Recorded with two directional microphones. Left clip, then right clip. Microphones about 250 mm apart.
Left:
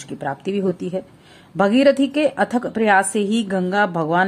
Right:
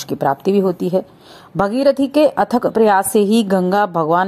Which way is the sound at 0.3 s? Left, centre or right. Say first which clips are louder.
Right 6 dB; centre.